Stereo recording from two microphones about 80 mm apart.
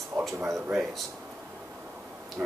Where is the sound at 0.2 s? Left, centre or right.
Right.